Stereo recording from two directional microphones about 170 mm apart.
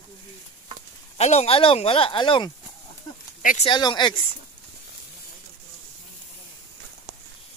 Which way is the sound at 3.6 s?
25° left (ahead or behind).